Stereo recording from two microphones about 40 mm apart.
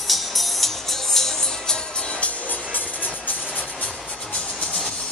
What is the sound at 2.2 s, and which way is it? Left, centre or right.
Music, left.